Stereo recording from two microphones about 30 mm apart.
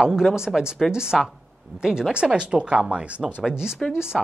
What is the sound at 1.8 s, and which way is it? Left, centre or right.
Speech, right.